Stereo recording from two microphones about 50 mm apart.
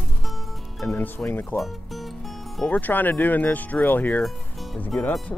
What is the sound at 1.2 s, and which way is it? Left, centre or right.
Speech, centre.